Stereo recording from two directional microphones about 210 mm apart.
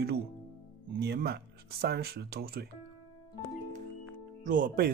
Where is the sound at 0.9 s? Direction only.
50° right (ahead or behind).